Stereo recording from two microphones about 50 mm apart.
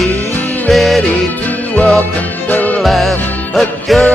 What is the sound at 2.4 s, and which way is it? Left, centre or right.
Music, left.